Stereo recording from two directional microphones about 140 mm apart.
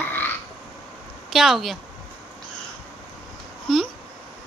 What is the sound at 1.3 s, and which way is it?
Speech, centre (ahead or behind).